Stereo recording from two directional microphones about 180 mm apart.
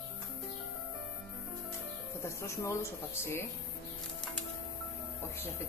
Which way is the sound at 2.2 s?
15° left (ahead or behind).